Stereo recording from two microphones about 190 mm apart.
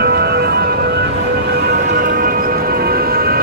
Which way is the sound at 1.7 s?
55° right (ahead or behind).